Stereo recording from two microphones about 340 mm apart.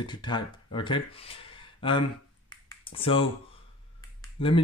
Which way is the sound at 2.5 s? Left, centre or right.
Centre.